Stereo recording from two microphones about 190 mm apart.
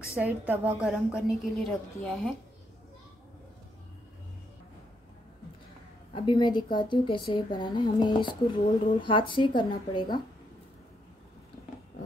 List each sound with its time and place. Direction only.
0.1 s a woman's voice: 10° right (ahead or behind)
6.1 s a woman's voice: 25° left (ahead or behind)